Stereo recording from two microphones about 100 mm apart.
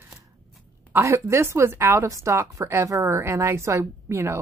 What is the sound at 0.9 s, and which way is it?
Speech, 25° right (ahead or behind).